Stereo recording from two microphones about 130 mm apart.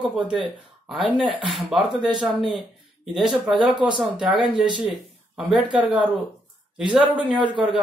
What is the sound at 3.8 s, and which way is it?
A man's voice, 5° right (ahead or behind).